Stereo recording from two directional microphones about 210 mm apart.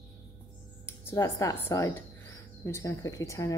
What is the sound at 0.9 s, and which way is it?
A woman's voice, 15° left (ahead or behind).